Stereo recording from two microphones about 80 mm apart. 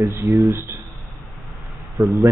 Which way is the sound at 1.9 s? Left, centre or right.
Centre.